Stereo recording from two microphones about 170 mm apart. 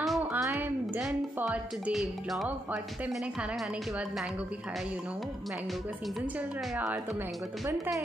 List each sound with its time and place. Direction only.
0.0 s music: centre (ahead or behind)
0.3 s a woman's voice: 15° right (ahead or behind)
6.7 s speech: 5° right (ahead or behind)